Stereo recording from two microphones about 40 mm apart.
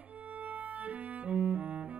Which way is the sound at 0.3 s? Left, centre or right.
Right.